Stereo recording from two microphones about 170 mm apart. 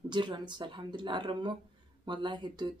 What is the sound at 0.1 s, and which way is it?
Speech, 25° right (ahead or behind).